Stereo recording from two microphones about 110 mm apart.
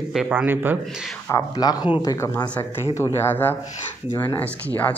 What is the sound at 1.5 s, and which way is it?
Speech, 40° left (ahead or behind).